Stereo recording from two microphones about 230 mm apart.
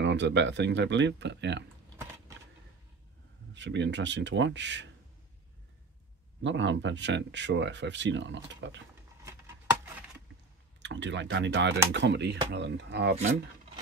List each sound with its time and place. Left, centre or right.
0.0 s speech: right
3.5 s speech: right
6.4 s speech: right
9.2 s a sound: centre
10.8 s speech: right